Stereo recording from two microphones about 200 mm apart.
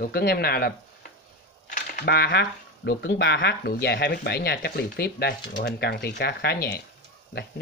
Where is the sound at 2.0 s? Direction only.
55° left (ahead or behind).